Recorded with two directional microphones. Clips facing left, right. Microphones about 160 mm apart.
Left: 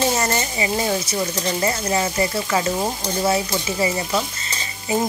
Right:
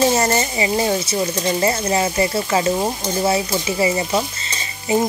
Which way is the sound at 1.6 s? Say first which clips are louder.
Right 2 dB; 25° right (ahead or behind).